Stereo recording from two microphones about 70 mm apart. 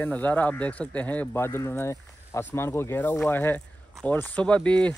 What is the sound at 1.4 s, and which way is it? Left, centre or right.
Speech, left.